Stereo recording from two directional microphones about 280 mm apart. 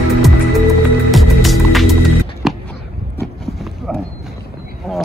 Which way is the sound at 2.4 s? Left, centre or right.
Centre.